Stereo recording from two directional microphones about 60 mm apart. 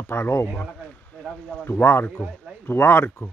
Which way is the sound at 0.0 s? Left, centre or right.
Left.